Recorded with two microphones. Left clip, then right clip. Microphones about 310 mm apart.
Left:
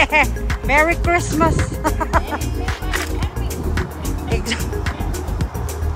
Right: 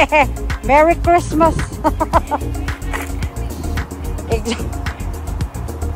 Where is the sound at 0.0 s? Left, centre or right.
Centre.